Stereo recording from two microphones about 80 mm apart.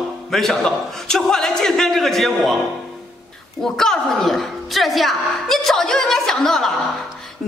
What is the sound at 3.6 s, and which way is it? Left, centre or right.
A woman's voice, centre.